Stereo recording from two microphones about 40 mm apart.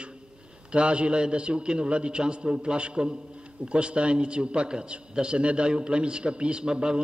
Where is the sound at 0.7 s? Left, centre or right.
Right.